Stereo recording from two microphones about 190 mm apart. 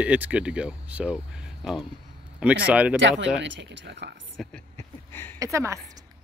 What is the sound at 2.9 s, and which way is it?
Speech, 75° right (ahead or behind).